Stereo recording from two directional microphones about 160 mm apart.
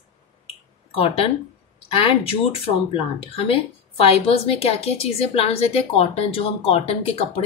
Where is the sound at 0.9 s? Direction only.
35° left (ahead or behind).